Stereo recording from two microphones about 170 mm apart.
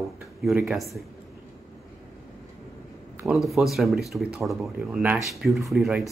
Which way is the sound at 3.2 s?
Centre (ahead or behind).